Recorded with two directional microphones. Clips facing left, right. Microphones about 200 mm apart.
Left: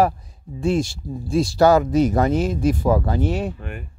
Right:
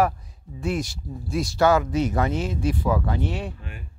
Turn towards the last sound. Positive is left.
turn(degrees=60)  # may be behind; listen again after turning